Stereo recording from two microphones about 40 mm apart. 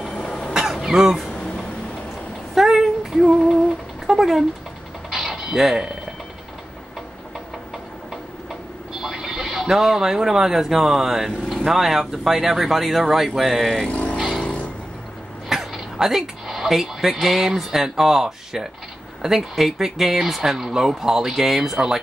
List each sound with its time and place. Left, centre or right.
0.2 s cough: centre
0.5 s a sound: centre
0.9 s speech: centre
1.3 s a sound: centre
2.5 s female singing: centre
4.1 s a sound: centre
5.1 s mechanisms: centre
8.9 s speech: centre
13.8 s vehicle: left
15.4 s speech: centre